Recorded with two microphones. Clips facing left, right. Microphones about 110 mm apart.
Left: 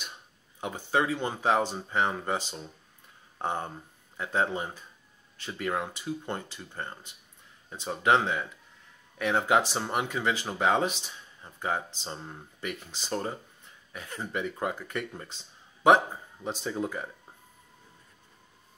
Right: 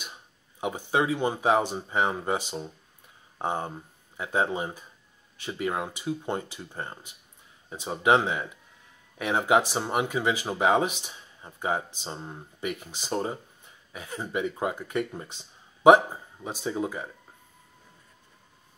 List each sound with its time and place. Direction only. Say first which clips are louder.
0.6 s speech: right 2 dB; 15° right (ahead or behind)
16.4 s speech: right 2 dB; 5° right (ahead or behind)